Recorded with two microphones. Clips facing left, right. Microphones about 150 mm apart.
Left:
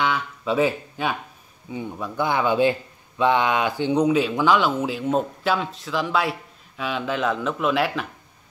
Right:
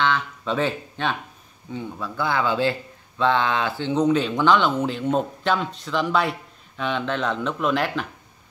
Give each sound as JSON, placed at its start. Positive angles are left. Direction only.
{"t": 0.0, "sound": "speech", "side_deg": 10}